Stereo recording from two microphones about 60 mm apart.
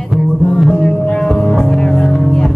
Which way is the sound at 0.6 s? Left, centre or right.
Centre.